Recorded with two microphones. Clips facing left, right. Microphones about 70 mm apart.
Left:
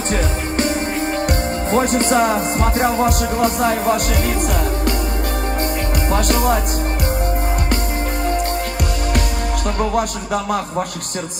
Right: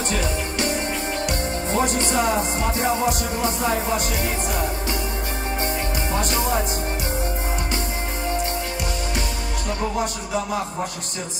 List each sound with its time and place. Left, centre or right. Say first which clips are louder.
0.1 s music: left 4 dB; left
6.1 s music: left 6 dB; left
9.9 s music: left 5 dB; left